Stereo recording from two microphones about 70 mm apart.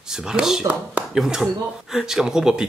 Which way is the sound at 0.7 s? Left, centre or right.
Right.